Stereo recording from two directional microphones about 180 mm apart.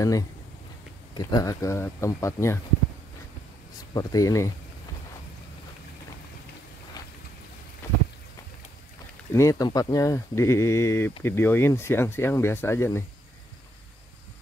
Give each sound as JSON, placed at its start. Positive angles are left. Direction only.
{"t": 1.1, "sound": "speech", "side_deg": 20}
{"t": 3.9, "sound": "speech", "side_deg": 20}
{"t": 9.3, "sound": "speech", "side_deg": 15}